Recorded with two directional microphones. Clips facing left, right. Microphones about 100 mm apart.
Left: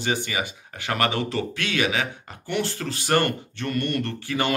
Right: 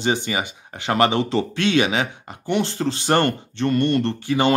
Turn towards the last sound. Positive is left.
turn(degrees=-20)  # may be behind; listen again after turning